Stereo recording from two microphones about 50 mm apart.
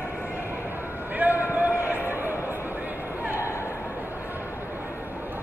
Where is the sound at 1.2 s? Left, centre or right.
Right.